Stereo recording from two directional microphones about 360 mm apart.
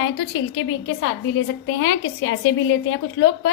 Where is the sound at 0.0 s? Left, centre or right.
Left.